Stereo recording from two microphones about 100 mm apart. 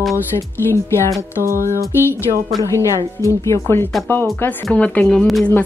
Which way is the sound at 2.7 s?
30° left (ahead or behind).